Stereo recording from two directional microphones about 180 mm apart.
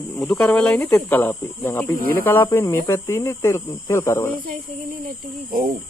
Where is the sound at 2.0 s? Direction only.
55° right (ahead or behind).